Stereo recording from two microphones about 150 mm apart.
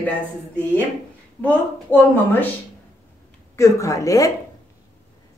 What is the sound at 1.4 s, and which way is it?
A woman's voice, 10° left (ahead or behind).